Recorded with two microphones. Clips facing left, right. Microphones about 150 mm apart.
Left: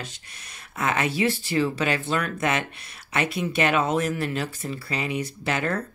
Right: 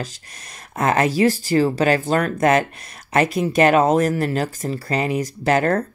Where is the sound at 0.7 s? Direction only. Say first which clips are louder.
Right 7 dB; 40° right (ahead or behind).